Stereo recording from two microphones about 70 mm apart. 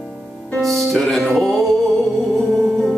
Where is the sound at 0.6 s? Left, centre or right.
Centre.